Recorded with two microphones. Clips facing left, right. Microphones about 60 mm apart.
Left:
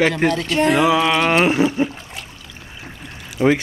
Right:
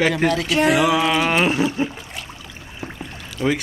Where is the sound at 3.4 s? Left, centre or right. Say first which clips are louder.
Left 5 dB; centre.